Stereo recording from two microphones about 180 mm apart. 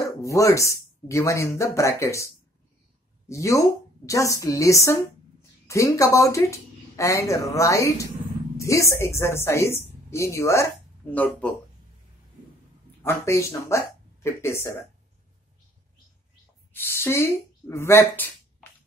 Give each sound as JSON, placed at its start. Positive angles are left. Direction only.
{"t": 0.0, "sound": "speech", "side_deg": 15}
{"t": 3.3, "sound": "a woman's voice", "side_deg": 15}
{"t": 13.0, "sound": "speech", "side_deg": 15}
{"t": 16.7, "sound": "speech", "side_deg": 15}